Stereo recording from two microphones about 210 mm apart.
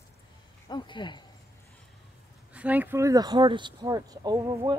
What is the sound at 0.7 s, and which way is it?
Speech, 20° left (ahead or behind).